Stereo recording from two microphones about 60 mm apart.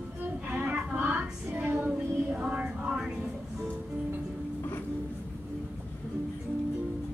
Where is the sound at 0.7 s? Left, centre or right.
Centre.